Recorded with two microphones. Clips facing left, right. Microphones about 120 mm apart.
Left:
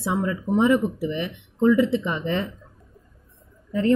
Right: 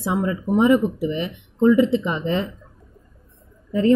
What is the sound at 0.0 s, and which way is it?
A woman's voice, 15° right (ahead or behind).